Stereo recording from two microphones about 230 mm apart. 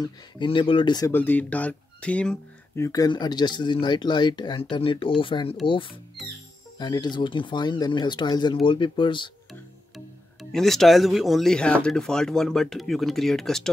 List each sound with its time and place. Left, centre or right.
0.0 s speech: left
6.2 s speech: centre
6.8 s speech: centre
10.5 s speech: centre